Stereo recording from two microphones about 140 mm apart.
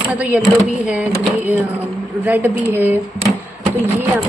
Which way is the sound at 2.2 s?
15° right (ahead or behind).